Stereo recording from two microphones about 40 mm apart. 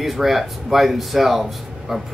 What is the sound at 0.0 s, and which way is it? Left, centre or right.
Speech, centre.